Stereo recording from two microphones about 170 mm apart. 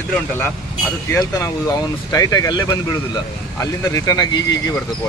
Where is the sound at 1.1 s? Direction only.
20° left (ahead or behind).